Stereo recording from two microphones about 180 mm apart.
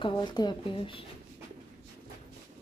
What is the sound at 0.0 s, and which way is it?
Speech, 25° left (ahead or behind).